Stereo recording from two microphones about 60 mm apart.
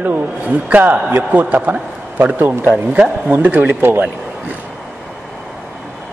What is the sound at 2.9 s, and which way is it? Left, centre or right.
A man's voice, right.